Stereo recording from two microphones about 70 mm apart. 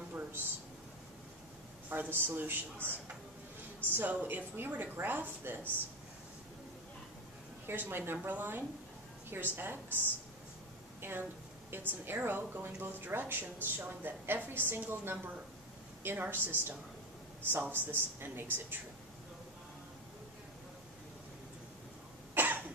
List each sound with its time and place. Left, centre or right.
0.1 s a sound: right
1.9 s a woman's voice: right
7.6 s a woman's voice: right
11.0 s a woman's voice: right
22.3 s cough: right